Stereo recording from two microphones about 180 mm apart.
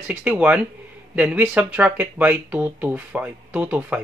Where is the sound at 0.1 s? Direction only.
5° right (ahead or behind).